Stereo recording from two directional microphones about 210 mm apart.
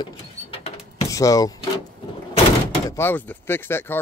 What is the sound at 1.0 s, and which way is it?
Speech, 15° left (ahead or behind).